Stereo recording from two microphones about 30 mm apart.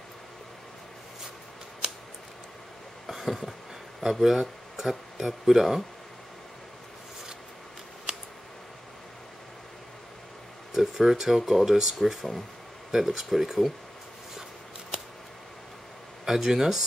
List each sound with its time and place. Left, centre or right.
1.8 s scissors: right
3.1 s a sound: centre
4.1 s speech: centre
8.1 s scissors: right
10.7 s speech: centre
16.3 s speech: centre